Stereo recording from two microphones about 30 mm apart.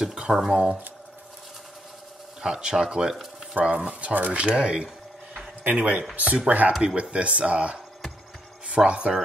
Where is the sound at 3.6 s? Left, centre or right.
Right.